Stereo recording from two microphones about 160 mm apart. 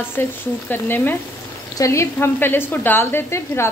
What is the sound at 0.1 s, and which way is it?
A woman's voice, 15° left (ahead or behind).